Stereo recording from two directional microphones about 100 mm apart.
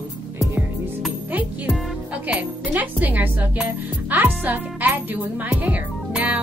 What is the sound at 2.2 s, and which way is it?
Music, 15° right (ahead or behind).